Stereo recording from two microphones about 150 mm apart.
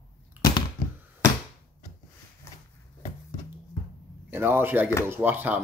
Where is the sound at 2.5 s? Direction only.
20° left (ahead or behind).